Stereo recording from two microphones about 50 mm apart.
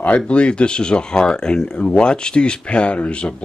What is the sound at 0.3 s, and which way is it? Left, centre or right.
Speech, left.